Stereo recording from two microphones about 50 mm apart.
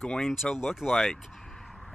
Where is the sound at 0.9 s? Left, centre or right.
Centre.